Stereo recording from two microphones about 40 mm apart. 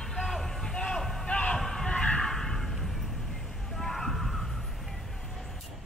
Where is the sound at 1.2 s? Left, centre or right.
Left.